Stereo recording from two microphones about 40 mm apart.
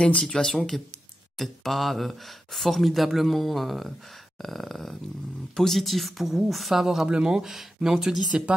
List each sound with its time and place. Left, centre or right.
0.2 s speech: centre
7.1 s speech: centre
8.3 s speech: right